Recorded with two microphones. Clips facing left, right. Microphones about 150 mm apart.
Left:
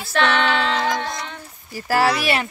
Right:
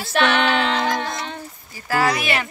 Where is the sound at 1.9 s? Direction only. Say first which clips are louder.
Left 2 dB; 30° left (ahead or behind).